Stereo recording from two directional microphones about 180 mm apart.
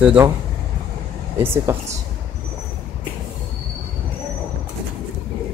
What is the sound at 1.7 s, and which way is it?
Speech, 15° right (ahead or behind).